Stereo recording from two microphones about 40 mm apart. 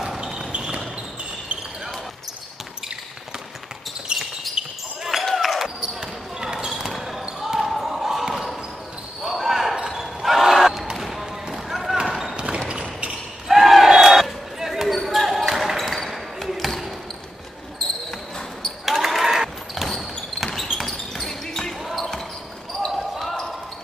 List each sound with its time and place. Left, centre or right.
0.2 s basketball bounce: centre
0.5 s basketball bounce: right
4.1 s basketball bounce: centre
5.2 s basketball bounce: centre
5.6 s basketball bounce: centre
7.1 s a sound: centre
7.7 s basketball bounce: centre
9.9 s crowd: centre
11.0 s basketball bounce: centre
12.4 s a sound: right
13.5 s basketball bounce: centre
18.9 s basketball bounce: centre
23.1 s basketball bounce: centre